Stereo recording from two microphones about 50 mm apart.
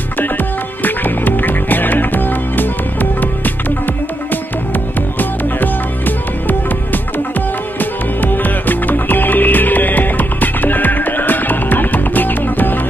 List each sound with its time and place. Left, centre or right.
0.8 s music: left
5.2 s music: left